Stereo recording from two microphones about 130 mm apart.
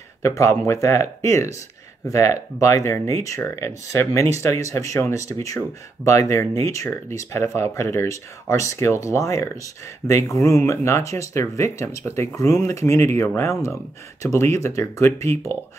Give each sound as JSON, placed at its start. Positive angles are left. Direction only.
{"t": 0.7, "sound": "speech", "side_deg": 25}